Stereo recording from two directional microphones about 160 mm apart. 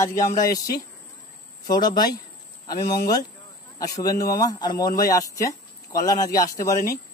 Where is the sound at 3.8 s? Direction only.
20° left (ahead or behind).